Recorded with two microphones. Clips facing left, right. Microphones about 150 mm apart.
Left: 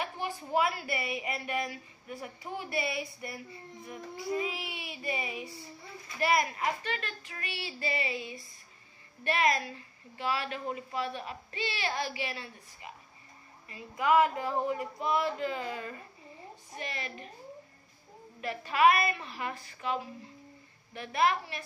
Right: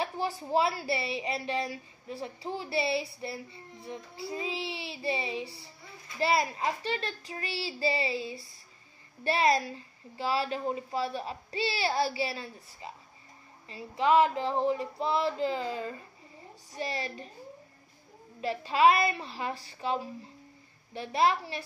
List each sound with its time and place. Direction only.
0.0 s a woman's voice: 35° right (ahead or behind)
3.8 s male singing: 30° right (ahead or behind)
6.1 s a woman's voice: 25° right (ahead or behind)
13.7 s male singing: 30° right (ahead or behind)
16.7 s a woman's voice: 35° right (ahead or behind)
18.4 s a woman's voice: 30° right (ahead or behind)